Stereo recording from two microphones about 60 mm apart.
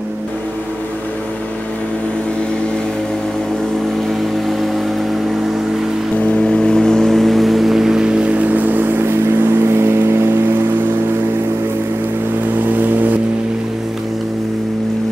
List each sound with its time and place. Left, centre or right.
6.1 s vehicle: left; by 9.1 s right
9.2 s vehicle: right
12.6 s vehicle: right